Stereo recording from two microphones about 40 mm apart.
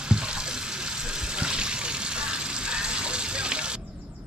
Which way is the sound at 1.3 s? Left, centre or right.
Right.